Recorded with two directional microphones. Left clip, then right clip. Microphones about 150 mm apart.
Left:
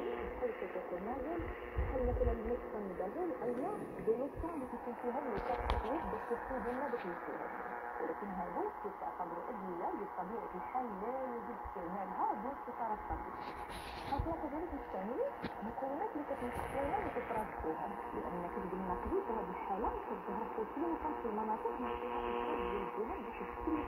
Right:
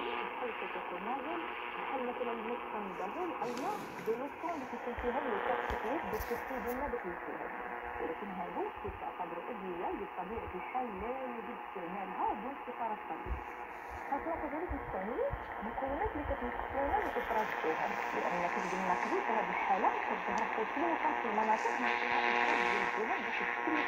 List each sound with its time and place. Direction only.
5.0 s speech: 20° right (ahead or behind)
16.7 s speech: 10° right (ahead or behind)